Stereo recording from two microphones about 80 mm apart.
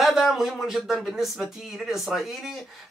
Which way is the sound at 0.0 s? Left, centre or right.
Centre.